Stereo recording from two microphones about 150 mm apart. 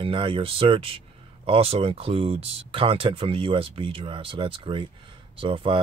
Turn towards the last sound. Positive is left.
turn(degrees=-35)  # may be behind; listen again after turning